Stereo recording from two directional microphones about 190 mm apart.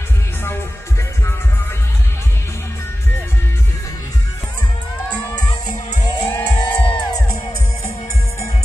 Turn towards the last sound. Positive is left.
turn(degrees=20)  # may be behind; listen again after turning